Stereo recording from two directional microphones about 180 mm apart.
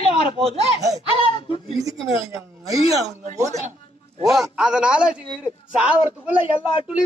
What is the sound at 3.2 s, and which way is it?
Speech, 40° right (ahead or behind).